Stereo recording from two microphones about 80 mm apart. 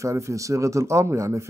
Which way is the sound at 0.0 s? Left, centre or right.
Right.